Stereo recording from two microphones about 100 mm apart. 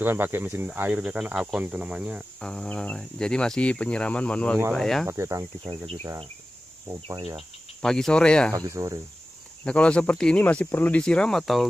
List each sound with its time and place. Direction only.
0.0 s speech: 20° right (ahead or behind)
2.4 s speech: 10° left (ahead or behind)
5.0 s speech: 30° right (ahead or behind)
7.2 s cricket: 55° right (ahead or behind)
7.8 s speech: 5° left (ahead or behind)
8.5 s speech: 35° right (ahead or behind)
9.7 s speech: 10° left (ahead or behind)